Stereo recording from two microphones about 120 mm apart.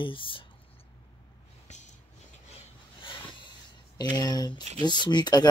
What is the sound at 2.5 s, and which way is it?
Rub, 45° left (ahead or behind).